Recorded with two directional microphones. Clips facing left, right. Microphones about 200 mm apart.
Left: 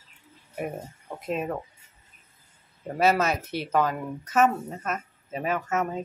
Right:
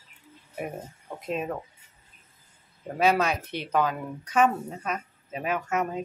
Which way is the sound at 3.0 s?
5° left (ahead or behind).